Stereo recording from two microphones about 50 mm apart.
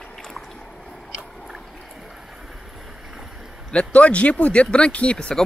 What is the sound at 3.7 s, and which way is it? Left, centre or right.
Speech, left.